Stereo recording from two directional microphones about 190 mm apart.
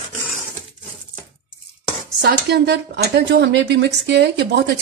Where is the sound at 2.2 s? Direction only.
60° right (ahead or behind).